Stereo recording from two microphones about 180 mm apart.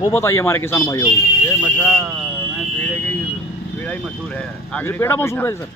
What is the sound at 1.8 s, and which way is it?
Speech, 5° left (ahead or behind).